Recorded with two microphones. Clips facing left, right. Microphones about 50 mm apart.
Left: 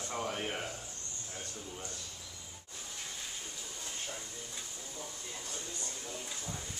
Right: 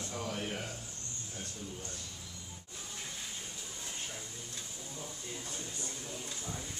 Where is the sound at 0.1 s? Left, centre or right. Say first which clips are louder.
Left 3 dB; left.